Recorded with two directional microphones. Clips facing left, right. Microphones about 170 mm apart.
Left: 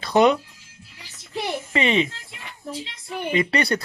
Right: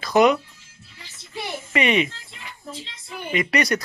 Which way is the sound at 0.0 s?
30° left (ahead or behind).